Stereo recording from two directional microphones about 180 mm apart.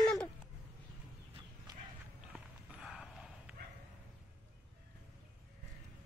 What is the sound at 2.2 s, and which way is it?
Clip-clop, 5° right (ahead or behind).